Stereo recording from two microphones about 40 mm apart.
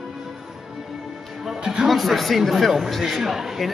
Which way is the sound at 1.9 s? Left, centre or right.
Centre.